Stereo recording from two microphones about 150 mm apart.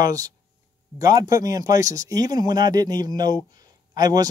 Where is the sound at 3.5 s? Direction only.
25° right (ahead or behind).